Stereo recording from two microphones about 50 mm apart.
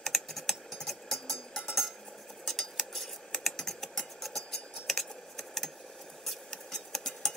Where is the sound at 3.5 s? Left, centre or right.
Centre.